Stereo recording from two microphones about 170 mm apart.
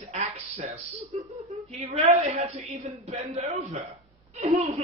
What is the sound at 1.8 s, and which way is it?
Speech, 40° right (ahead or behind).